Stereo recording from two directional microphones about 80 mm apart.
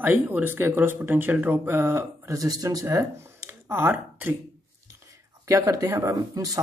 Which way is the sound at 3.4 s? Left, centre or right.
Right.